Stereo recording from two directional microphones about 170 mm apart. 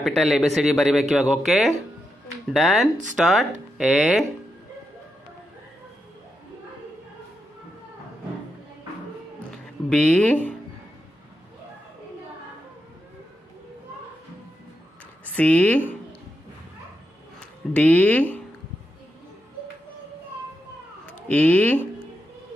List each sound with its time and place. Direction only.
0.0 s speech: centre (ahead or behind)
9.5 s music: 5° left (ahead or behind)
15.3 s speech: 10° left (ahead or behind)
17.4 s speech: 10° left (ahead or behind)
21.1 s speech: 10° left (ahead or behind)